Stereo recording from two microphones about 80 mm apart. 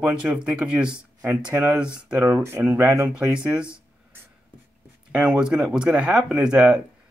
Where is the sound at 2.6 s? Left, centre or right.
Right.